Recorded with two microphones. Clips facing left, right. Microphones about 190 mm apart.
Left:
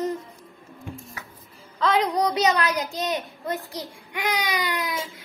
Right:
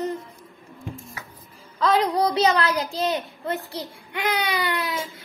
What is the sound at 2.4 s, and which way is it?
Speech, 15° left (ahead or behind).